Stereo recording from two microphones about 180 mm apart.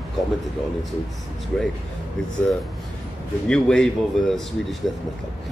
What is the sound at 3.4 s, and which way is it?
A man's voice, 5° left (ahead or behind).